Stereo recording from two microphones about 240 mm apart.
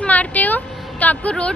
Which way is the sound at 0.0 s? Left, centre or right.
Centre.